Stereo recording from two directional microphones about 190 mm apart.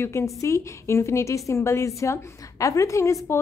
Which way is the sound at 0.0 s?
15° left (ahead or behind).